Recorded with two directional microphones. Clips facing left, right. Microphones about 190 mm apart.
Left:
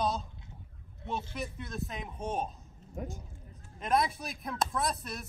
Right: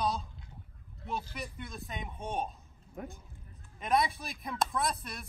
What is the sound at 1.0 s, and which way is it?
Speech, 25° left (ahead or behind).